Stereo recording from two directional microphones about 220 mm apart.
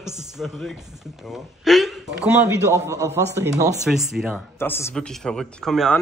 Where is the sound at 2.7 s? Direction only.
15° right (ahead or behind).